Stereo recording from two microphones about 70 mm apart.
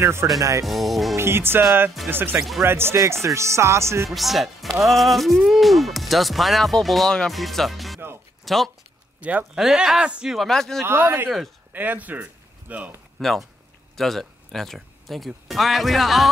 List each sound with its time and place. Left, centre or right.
0.0 s speech: right
0.7 s speech: centre
1.1 s music: right
2.0 s speech: right
3.0 s speech: right
4.1 s speech: centre
9.2 s speech: centre
9.6 s speech: centre
10.3 s speech: centre
10.9 s speech: right
11.2 s speech: centre
11.7 s speech: right
13.2 s speech: centre